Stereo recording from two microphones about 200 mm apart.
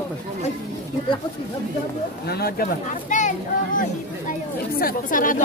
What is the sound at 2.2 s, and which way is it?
Speech, 50° left (ahead or behind).